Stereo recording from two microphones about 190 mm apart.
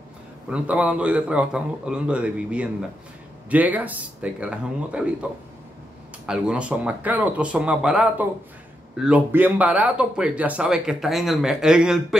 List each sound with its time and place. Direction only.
0.5 s speech: 5° right (ahead or behind)
6.2 s speech: 5° right (ahead or behind)